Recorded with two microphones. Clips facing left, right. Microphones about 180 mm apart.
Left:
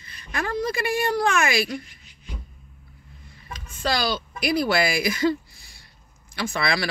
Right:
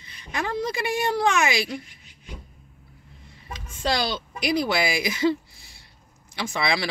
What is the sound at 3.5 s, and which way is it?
Speech, 20° right (ahead or behind).